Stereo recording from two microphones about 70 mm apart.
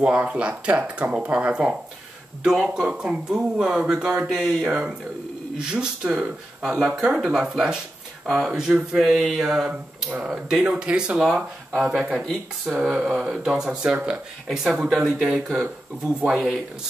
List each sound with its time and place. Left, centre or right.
0.0 s speech: centre
12.9 s speech: centre
16.3 s speech: centre